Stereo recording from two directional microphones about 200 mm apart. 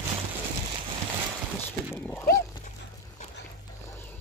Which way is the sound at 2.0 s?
10° left (ahead or behind).